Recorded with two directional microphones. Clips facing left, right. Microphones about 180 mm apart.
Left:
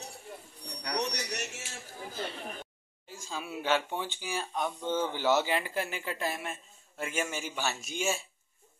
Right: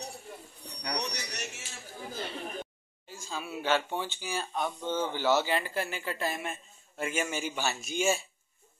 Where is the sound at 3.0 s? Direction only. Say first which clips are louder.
Right 1 dB; 20° left (ahead or behind).